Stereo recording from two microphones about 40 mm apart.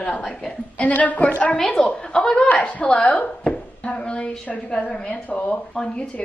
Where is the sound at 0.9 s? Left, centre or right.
Left.